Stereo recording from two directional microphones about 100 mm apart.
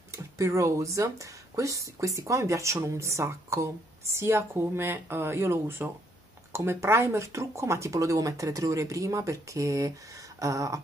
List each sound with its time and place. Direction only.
0.1 s speech: 30° right (ahead or behind)